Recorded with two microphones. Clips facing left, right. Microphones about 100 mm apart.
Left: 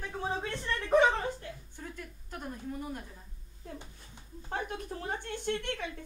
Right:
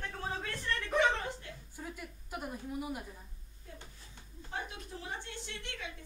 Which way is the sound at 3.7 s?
15° left (ahead or behind).